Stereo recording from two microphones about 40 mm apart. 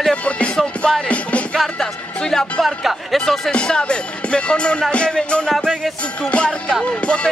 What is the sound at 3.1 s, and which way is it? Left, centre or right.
Speech, centre.